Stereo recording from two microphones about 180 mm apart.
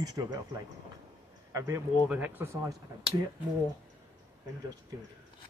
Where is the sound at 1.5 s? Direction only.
20° right (ahead or behind).